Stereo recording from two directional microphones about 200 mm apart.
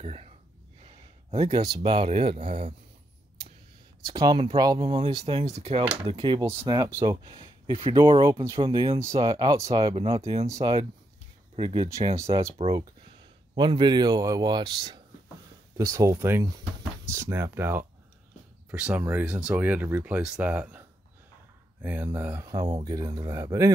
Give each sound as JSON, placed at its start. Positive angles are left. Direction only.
{"t": 0.0, "sound": "speech", "side_deg": -30}
{"t": 0.8, "sound": "a sound", "side_deg": -30}
{"t": 1.8, "sound": "speech", "side_deg": -30}
{"t": 4.0, "sound": "speech", "side_deg": -20}
{"t": 21.8, "sound": "speech", "side_deg": -10}
{"t": 22.7, "sound": "speech", "side_deg": -30}
{"t": 22.9, "sound": "speech", "side_deg": -20}